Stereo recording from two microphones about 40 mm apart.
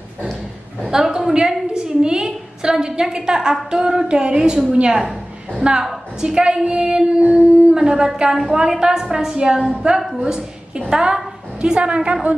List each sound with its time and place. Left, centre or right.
0.8 s a sound: centre
2.6 s a woman's voice: centre
5.6 s a woman's voice: right